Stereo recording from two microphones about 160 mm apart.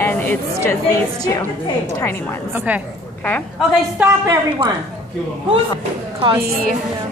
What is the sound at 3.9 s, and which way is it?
Speech, 15° right (ahead or behind).